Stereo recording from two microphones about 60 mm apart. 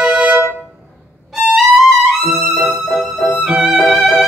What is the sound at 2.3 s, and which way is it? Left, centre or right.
Music, centre.